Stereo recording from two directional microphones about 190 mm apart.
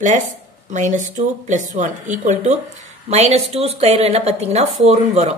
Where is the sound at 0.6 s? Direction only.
40° right (ahead or behind).